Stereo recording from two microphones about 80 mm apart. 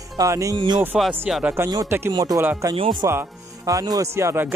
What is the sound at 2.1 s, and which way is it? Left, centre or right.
Speech, right.